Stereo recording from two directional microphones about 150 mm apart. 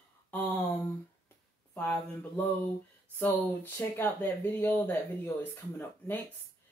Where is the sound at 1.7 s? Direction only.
10° left (ahead or behind).